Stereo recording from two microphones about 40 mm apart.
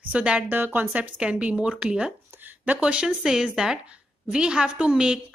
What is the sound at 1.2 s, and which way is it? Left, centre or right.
Speech, right.